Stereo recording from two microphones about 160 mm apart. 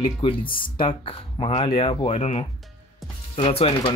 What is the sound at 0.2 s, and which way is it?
Speech, 30° left (ahead or behind).